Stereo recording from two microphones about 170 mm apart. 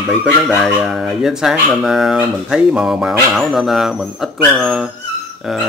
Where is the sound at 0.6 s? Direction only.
Centre (ahead or behind).